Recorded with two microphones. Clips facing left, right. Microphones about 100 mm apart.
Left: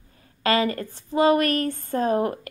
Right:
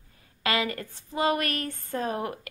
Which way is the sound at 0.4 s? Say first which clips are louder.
Left 6 dB; 35° left (ahead or behind).